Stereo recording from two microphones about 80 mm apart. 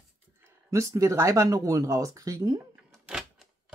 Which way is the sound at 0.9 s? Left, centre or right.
Right.